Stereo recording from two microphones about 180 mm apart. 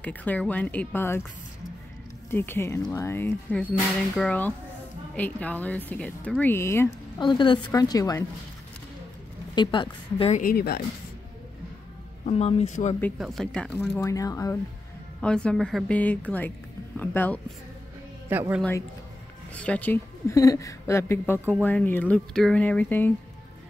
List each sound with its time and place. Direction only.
0.0 s speech: 10° left (ahead or behind)
2.3 s speech: 10° left (ahead or behind)
7.2 s a woman's voice: 25° left (ahead or behind)
9.6 s a woman's voice: 25° left (ahead or behind)
10.3 s speech: 50° left (ahead or behind)
12.3 s speech: 35° left (ahead or behind)
13.2 s speech: centre (ahead or behind)
13.7 s speech: 15° left (ahead or behind)
15.1 s speech: 5° left (ahead or behind)
18.6 s speech: 10° left (ahead or behind)